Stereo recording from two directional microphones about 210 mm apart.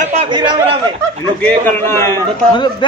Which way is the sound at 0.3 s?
20° right (ahead or behind).